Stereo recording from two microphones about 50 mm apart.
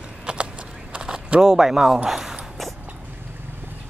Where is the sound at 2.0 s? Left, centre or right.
Centre.